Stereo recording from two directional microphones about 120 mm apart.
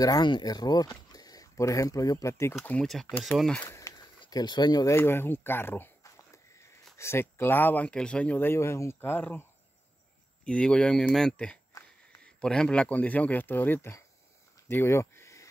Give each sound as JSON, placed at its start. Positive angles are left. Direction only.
{"t": 0.0, "sound": "speech", "side_deg": 35}
{"t": 2.6, "sound": "speech", "side_deg": 10}
{"t": 2.9, "sound": "speech", "side_deg": 0}
{"t": 3.6, "sound": "a sound", "side_deg": 25}
{"t": 4.2, "sound": "speech", "side_deg": 35}
{"t": 4.9, "sound": "a sound", "side_deg": 20}
{"t": 7.0, "sound": "speech", "side_deg": 20}